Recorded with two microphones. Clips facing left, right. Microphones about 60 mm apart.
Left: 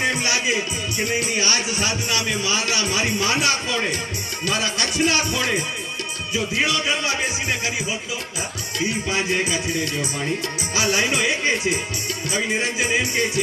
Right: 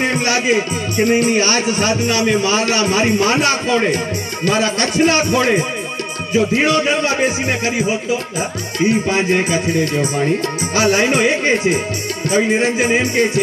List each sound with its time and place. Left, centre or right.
0.0 s a man's voice: right